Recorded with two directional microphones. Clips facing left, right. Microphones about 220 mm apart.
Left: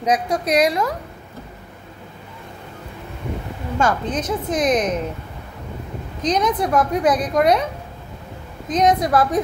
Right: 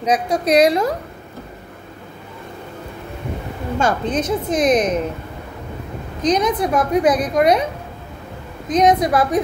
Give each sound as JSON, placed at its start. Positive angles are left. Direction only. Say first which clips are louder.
{"t": 0.0, "sound": "a woman's voice", "louder": "right 2 dB", "side_deg": -25}
{"t": 3.8, "sound": "a woman's voice", "louder": "right 2 dB", "side_deg": -25}
{"t": 6.2, "sound": "a woman's voice", "louder": "right 2 dB", "side_deg": -15}
{"t": 8.6, "sound": "a woman's voice", "louder": "right 3 dB", "side_deg": -20}